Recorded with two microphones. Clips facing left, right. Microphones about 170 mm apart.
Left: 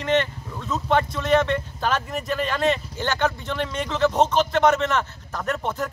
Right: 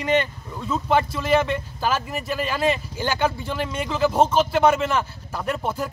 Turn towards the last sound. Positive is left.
turn(degrees=-10)  # may be behind; listen again after turning